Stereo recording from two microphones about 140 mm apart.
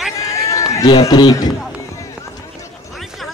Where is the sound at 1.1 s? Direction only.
30° left (ahead or behind).